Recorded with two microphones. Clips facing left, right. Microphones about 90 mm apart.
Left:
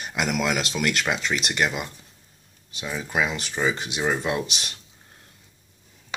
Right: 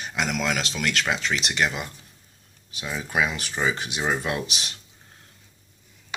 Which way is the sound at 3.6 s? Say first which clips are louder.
Left 1 dB; 10° right (ahead or behind).